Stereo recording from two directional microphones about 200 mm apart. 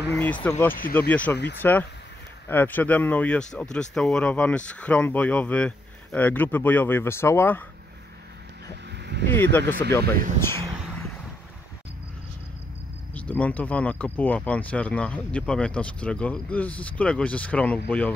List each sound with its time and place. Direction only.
0.1 s speech: 5° left (ahead or behind)
9.0 s vehicle: 60° right (ahead or behind)
9.3 s speech: 10° left (ahead or behind)
13.1 s speech: 5° left (ahead or behind)